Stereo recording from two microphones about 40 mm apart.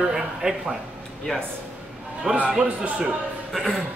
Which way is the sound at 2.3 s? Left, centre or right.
Right.